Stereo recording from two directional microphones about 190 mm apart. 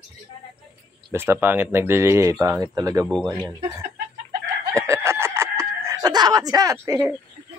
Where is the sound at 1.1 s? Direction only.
10° right (ahead or behind).